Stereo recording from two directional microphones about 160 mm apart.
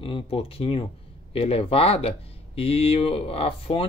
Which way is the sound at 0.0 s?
35° left (ahead or behind).